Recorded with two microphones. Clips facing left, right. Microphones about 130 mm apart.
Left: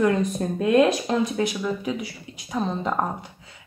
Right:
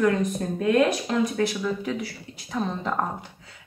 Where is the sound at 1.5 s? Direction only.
10° left (ahead or behind).